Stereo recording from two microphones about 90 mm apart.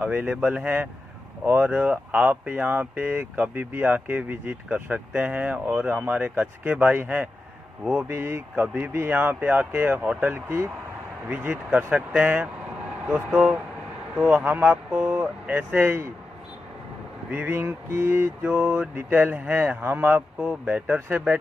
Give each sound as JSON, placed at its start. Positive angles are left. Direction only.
{"t": 0.0, "sound": "speech", "side_deg": -15}
{"t": 8.1, "sound": "mantra", "side_deg": -25}
{"t": 11.2, "sound": "speech", "side_deg": -15}
{"t": 17.3, "sound": "speech", "side_deg": -15}
{"t": 17.6, "sound": "mantra", "side_deg": -25}